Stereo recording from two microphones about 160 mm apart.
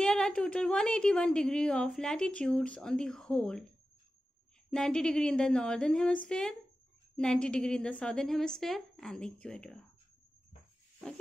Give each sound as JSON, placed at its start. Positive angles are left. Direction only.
{"t": 0.0, "sound": "a woman's voice", "side_deg": 5}
{"t": 4.6, "sound": "a woman's voice", "side_deg": 5}